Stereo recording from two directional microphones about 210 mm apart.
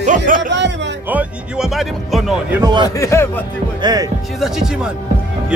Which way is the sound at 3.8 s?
15° right (ahead or behind).